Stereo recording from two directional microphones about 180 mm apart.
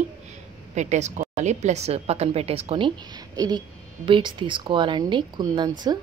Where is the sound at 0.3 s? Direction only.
40° right (ahead or behind); by 5.9 s 20° right (ahead or behind).